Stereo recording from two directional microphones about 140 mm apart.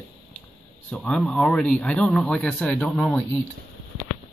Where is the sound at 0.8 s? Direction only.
10° left (ahead or behind).